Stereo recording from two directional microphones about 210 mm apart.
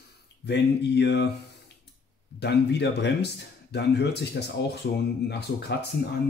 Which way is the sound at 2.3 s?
55° left (ahead or behind).